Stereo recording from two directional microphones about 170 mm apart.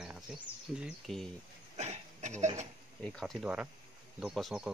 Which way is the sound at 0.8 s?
Centre (ahead or behind).